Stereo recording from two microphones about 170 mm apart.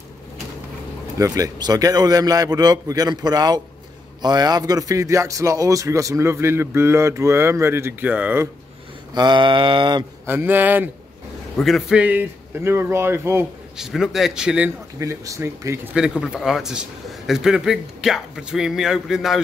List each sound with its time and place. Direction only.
1.1 s a man's voice: 20° right (ahead or behind)
9.1 s a man's voice: 25° right (ahead or behind)
10.2 s speech: 10° right (ahead or behind)
11.5 s speech: centre (ahead or behind)
13.7 s a man's voice: 5° right (ahead or behind)
15.0 s a man's voice: 20° right (ahead or behind); by 19.4 s centre (ahead or behind)